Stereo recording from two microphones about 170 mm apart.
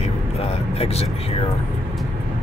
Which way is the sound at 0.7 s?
35° left (ahead or behind).